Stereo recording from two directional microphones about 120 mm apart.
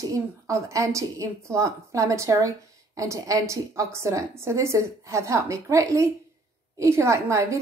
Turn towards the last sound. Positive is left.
turn(degrees=-25)  # may be behind; listen again after turning